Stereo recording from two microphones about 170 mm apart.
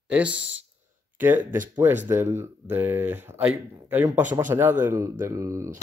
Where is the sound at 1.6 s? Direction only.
10° right (ahead or behind).